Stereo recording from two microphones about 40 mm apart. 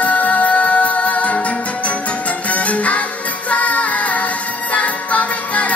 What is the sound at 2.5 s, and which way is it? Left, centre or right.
Music, left.